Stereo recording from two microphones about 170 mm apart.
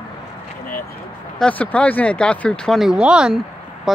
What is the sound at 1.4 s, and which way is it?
Speech, 10° left (ahead or behind).